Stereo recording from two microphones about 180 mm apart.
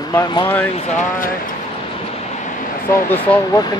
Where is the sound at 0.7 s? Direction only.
50° left (ahead or behind).